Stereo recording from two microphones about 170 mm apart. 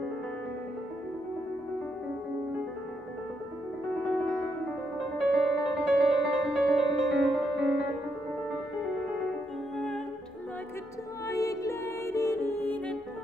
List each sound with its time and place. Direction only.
5.3 s music: centre (ahead or behind)
11.2 s music: 20° left (ahead or behind)